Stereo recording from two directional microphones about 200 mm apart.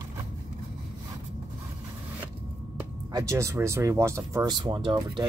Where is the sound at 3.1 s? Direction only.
15° right (ahead or behind).